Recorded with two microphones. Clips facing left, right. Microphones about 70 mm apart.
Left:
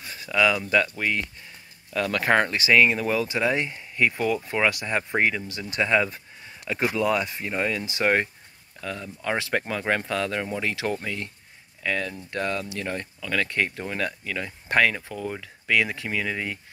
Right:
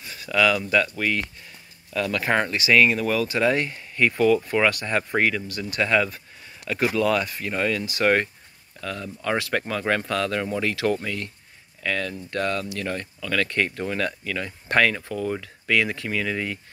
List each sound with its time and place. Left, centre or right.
0.2 s speech: left
2.0 s speech: left
3.3 s speech: centre